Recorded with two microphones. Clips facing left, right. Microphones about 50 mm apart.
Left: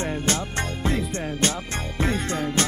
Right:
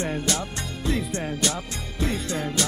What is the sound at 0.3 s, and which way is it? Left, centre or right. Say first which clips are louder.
Music: left 3 dB; left.